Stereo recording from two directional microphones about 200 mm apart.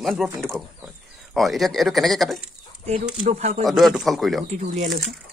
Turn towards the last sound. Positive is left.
turn(degrees=-35)  # may be behind; listen again after turning